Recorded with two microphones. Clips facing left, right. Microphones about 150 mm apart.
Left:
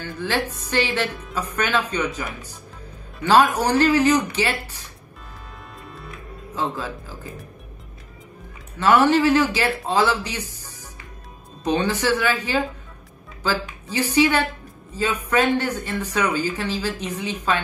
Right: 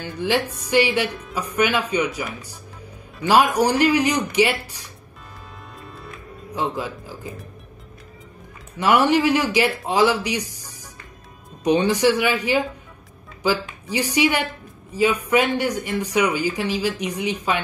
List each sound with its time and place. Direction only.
0.0 s speech: 15° right (ahead or behind)
5.9 s music: centre (ahead or behind)
6.5 s speech: 15° right (ahead or behind)
8.7 s a woman's voice: 15° right (ahead or behind)